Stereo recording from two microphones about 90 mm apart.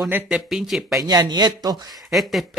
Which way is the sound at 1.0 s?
50° right (ahead or behind).